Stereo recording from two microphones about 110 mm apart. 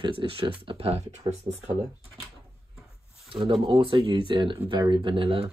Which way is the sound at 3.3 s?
55° right (ahead or behind).